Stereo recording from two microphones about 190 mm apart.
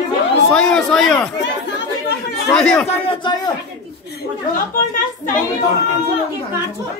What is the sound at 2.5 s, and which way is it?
Speech, 5° left (ahead or behind).